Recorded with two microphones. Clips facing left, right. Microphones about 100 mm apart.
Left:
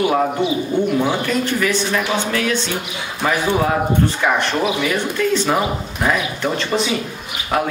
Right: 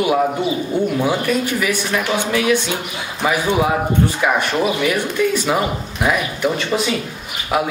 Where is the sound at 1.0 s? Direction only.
10° right (ahead or behind).